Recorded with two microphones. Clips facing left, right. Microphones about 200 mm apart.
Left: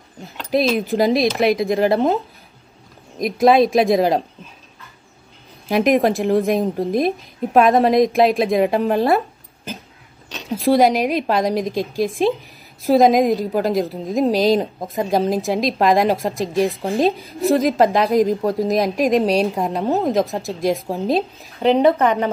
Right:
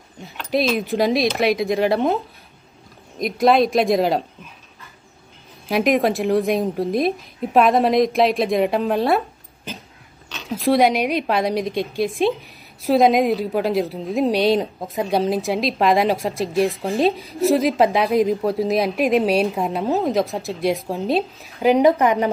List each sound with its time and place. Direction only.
0.5 s a woman's voice: centre (ahead or behind)
5.7 s a woman's voice: centre (ahead or behind)
10.6 s a woman's voice: centre (ahead or behind)
21.7 s a woman's voice: 10° right (ahead or behind)